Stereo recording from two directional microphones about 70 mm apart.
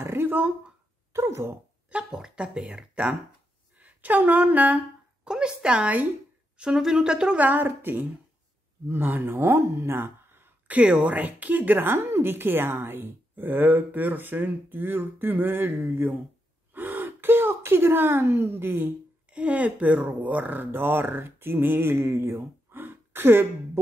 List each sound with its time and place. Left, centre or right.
0.0 s a sound: right
1.1 s speech: right
2.0 s speech: centre
5.2 s speech: centre
6.6 s speech: centre
7.3 s a woman's voice: right
10.8 s a woman's voice: centre; by 18.9 s right
19.3 s speech: centre